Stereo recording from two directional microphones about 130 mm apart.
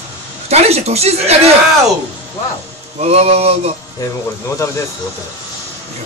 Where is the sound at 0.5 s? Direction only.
55° right (ahead or behind).